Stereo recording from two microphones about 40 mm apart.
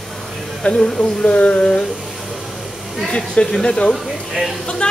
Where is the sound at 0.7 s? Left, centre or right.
Centre.